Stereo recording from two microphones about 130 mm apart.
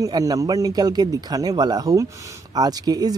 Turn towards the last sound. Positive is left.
turn(degrees=-30)  # may be behind; listen again after turning